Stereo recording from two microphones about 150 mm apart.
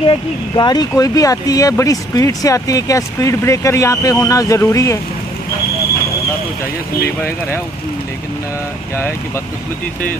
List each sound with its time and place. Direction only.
0.0 s speech: 30° left (ahead or behind)
7.2 s speech: 15° left (ahead or behind)